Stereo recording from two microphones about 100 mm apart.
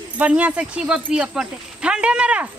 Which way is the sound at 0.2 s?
15° right (ahead or behind).